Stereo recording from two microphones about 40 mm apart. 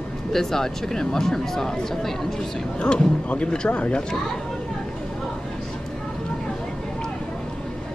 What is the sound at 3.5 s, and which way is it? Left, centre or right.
Speech, left.